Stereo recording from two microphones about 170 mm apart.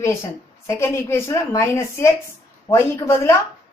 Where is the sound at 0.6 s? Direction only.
15° left (ahead or behind).